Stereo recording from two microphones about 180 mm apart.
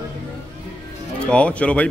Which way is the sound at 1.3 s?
5° left (ahead or behind).